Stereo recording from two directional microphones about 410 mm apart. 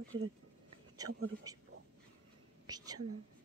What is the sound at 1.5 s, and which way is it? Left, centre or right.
Speech, centre.